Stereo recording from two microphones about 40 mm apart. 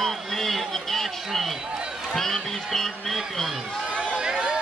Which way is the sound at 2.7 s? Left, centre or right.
Centre.